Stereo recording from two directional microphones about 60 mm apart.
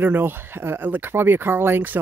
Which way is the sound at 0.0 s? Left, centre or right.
Right.